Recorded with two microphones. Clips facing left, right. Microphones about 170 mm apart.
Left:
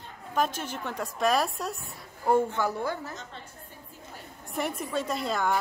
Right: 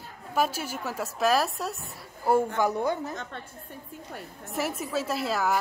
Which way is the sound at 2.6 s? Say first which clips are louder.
Right 4 dB; 20° right (ahead or behind).